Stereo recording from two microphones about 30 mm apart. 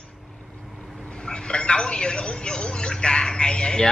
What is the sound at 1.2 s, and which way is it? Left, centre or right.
A man's voice, left.